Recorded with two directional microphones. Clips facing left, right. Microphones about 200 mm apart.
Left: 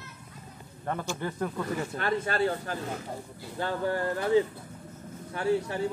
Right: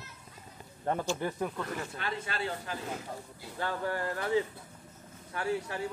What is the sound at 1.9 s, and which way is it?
Speech, 45° left (ahead or behind).